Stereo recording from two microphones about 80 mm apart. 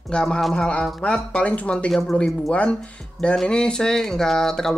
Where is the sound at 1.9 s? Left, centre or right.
Centre.